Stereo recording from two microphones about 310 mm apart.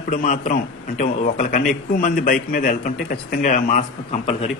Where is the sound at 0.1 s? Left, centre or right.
Left.